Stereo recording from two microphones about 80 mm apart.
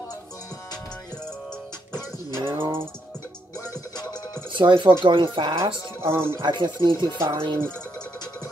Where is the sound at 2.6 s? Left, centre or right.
Right.